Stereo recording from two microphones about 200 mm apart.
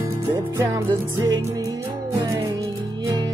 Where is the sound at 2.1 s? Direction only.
15° right (ahead or behind).